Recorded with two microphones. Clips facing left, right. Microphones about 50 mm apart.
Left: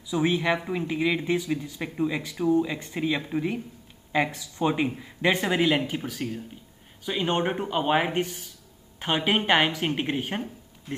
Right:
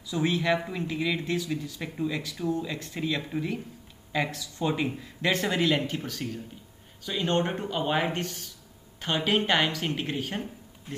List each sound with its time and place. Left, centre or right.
0.0 s speech: centre